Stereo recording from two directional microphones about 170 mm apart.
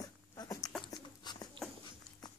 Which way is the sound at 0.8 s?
25° left (ahead or behind).